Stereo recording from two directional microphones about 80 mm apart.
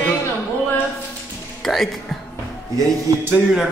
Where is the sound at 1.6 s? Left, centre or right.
Centre.